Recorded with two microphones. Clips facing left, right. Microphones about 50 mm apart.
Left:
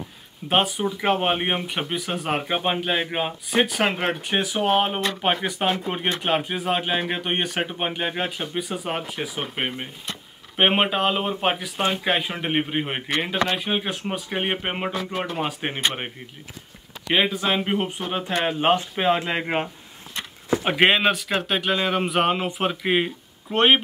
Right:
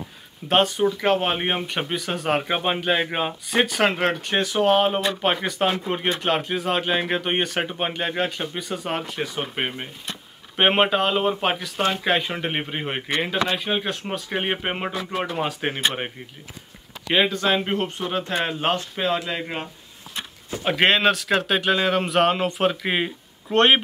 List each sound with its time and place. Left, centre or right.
0.5 s speech: centre
17.1 s speech: centre; by 19.7 s left
20.8 s speech: centre